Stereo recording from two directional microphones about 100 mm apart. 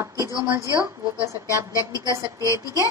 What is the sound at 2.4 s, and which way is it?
Speech, 35° left (ahead or behind).